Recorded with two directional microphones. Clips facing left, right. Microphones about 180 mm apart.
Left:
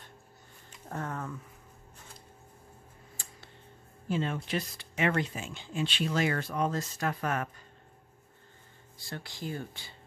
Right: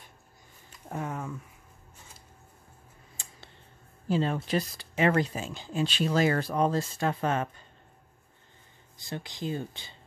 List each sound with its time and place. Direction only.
0.8 s speech: 10° right (ahead or behind)
4.1 s speech: 35° right (ahead or behind)
8.9 s speech: 20° right (ahead or behind)